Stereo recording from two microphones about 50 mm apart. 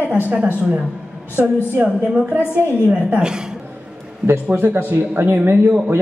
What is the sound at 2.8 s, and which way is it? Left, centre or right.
Speech, right.